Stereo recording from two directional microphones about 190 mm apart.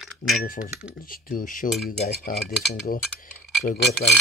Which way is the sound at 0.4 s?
45° left (ahead or behind).